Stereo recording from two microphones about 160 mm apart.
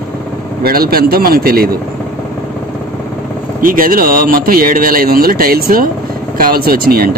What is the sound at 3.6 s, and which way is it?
Speech, 60° right (ahead or behind).